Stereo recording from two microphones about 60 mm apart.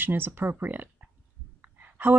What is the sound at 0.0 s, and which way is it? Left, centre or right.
Speech, right.